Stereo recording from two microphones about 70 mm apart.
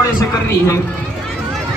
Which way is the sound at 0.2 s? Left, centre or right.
Left.